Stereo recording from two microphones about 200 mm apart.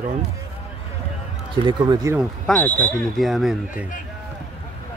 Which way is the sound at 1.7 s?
20° right (ahead or behind).